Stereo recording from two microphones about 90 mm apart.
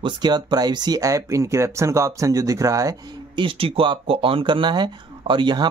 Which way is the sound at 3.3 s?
70° right (ahead or behind).